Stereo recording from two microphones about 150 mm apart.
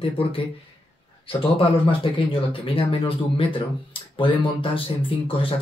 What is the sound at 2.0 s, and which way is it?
Speech, 35° left (ahead or behind).